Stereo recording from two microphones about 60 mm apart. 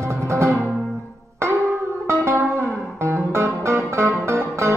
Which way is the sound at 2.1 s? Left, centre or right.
Right.